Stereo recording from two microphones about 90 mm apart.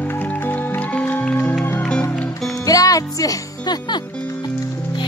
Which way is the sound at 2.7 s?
40° left (ahead or behind).